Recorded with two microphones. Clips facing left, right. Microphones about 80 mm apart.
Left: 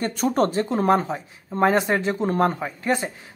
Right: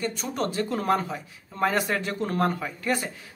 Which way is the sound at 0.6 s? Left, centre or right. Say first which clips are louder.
Left 5 dB; left.